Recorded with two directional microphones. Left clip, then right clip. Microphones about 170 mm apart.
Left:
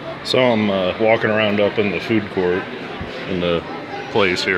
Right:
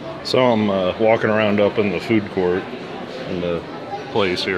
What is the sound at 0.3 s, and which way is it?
Speech, centre (ahead or behind).